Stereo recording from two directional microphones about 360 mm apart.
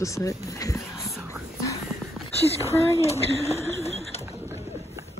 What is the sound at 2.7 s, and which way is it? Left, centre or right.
Speech, centre.